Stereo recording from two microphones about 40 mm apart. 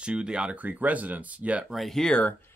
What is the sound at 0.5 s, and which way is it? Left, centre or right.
Speech, right.